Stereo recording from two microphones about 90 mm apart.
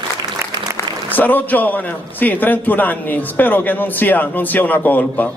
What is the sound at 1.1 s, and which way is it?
A man's voice, 20° left (ahead or behind).